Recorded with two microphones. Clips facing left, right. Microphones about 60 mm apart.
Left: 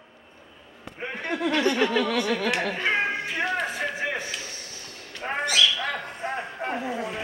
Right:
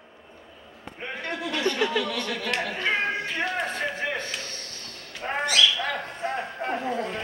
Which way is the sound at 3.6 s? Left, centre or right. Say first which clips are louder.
Even; centre.